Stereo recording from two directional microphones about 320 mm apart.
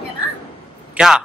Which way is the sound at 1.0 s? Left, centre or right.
Centre.